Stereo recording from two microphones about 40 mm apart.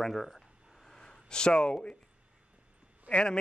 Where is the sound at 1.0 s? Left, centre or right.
Centre.